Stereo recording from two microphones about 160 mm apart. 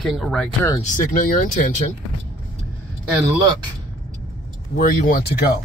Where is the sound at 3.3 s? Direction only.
25° right (ahead or behind).